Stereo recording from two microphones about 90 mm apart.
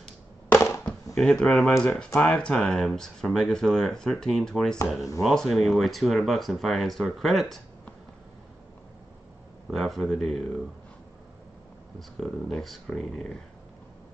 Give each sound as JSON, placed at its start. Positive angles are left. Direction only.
{"t": 0.5, "sound": "a sound", "side_deg": 30}
{"t": 0.8, "sound": "speech", "side_deg": 5}
{"t": 9.7, "sound": "speech", "side_deg": 0}
{"t": 12.0, "sound": "speech", "side_deg": 5}